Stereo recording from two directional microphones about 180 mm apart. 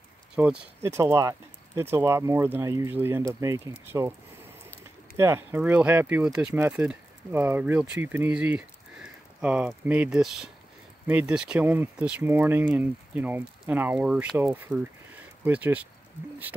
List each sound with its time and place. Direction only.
0.4 s speech: 10° right (ahead or behind)
5.1 s speech: 15° right (ahead or behind)